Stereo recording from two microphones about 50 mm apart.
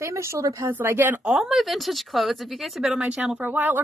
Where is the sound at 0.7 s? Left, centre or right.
Right.